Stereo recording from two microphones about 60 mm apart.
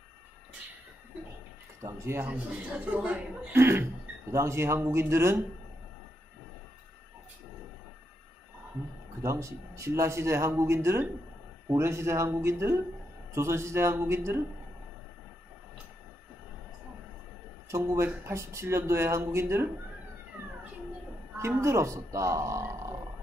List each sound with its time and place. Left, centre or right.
1.8 s speech: right
2.6 s a woman's voice: right
3.5 s speech: right
4.3 s speech: right
9.2 s speech: right
17.6 s speech: right
21.4 s speech: right